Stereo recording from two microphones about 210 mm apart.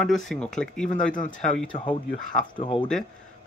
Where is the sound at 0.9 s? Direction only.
40° left (ahead or behind).